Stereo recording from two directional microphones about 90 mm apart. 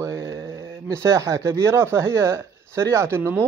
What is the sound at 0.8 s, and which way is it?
Speech, 40° right (ahead or behind).